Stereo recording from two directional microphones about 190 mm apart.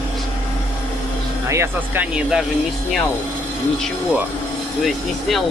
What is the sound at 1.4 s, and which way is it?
Speech, 10° right (ahead or behind).